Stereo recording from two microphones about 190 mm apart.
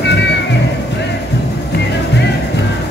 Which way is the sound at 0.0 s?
65° left (ahead or behind).